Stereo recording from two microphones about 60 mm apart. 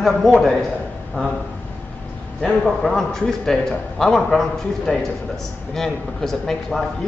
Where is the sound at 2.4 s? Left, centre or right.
Centre.